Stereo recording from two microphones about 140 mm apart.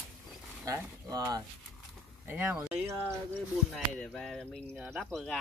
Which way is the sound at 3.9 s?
5° left (ahead or behind).